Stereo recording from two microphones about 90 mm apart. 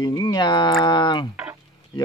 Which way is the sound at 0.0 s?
50° left (ahead or behind).